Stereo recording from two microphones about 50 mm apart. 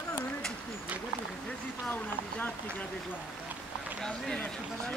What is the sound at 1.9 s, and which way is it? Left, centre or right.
Speech, left.